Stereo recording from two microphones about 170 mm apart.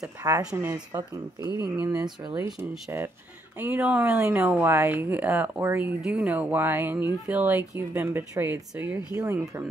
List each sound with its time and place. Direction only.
0.4 s speech: 10° right (ahead or behind)